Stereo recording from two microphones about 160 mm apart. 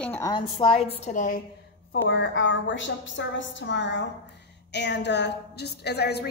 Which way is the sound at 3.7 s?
90° left.